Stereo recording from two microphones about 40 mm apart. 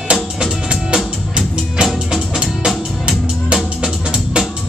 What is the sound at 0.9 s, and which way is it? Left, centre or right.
Music, right.